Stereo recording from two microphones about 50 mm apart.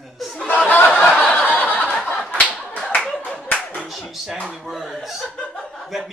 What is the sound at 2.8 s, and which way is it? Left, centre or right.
Clapping, centre.